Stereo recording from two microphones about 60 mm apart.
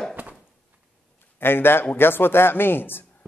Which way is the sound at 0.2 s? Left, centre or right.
Right.